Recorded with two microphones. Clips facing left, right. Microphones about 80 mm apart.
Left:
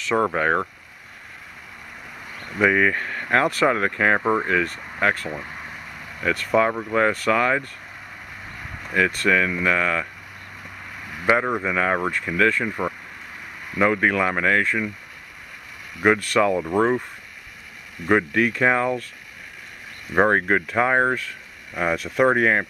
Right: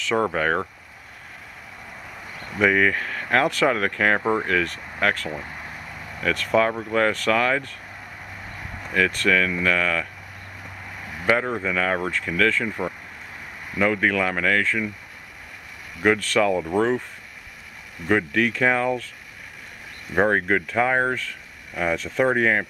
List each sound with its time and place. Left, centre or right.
0.0 s speech: centre
2.6 s speech: centre
3.7 s speech: centre
8.9 s speech: centre
11.2 s speech: centre
16.0 s speech: centre
18.0 s speech: centre
20.2 s speech: centre